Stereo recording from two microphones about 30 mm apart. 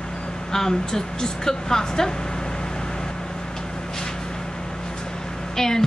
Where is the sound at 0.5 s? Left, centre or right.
Centre.